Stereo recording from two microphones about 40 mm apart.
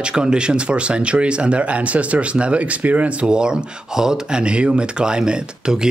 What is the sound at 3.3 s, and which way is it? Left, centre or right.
Speech, right.